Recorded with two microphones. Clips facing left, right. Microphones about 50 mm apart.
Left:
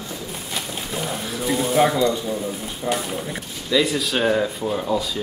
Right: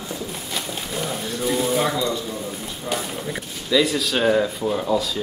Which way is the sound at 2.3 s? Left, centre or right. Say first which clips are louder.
Left 3 dB; centre.